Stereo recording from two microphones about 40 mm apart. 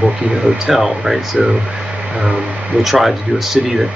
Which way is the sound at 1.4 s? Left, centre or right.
Centre.